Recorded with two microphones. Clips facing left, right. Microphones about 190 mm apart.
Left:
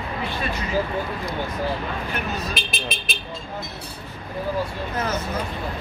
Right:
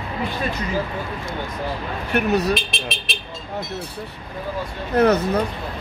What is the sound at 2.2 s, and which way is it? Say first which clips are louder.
Speech: right 15 dB; 70° right (ahead or behind).